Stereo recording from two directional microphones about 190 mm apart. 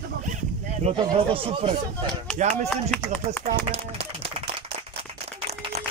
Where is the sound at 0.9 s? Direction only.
30° right (ahead or behind).